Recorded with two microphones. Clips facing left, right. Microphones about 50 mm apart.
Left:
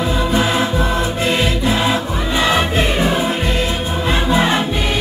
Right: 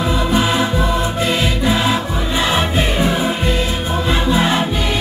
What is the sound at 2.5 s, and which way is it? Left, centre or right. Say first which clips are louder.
Music: left 1 dB; centre.